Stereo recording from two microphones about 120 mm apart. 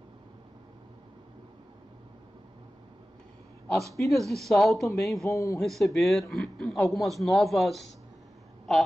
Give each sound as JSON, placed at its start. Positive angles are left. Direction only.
{"t": 3.9, "sound": "speech", "side_deg": 0}
{"t": 5.3, "sound": "a man's voice", "side_deg": 25}
{"t": 5.6, "sound": "speech", "side_deg": 0}